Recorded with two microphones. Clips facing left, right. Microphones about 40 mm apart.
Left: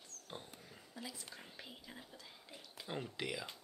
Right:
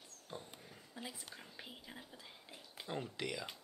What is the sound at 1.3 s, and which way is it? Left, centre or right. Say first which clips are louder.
Speech: even; centre.